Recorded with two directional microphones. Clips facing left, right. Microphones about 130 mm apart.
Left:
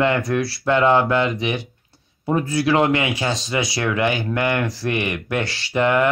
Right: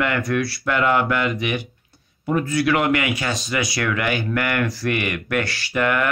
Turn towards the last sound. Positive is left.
turn(degrees=25)  # may be behind; listen again after turning